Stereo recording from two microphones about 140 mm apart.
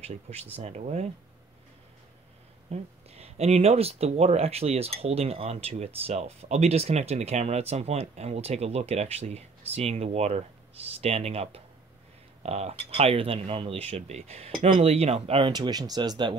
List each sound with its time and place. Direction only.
0.0 s speech: 50° right (ahead or behind)
2.7 s speech: 50° right (ahead or behind); by 16.3 s 35° right (ahead or behind)